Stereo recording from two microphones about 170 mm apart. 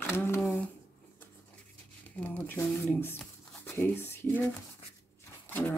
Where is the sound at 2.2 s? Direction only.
10° left (ahead or behind).